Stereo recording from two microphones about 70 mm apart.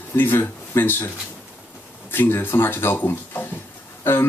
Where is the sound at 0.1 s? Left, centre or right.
Left.